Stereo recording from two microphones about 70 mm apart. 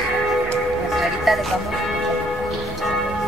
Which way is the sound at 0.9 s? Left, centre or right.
Centre.